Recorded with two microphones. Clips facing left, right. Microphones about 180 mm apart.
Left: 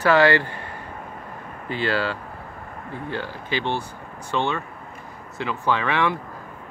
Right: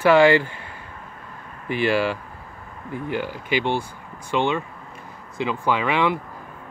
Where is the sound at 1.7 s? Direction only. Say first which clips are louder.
Right 3 dB; 15° right (ahead or behind).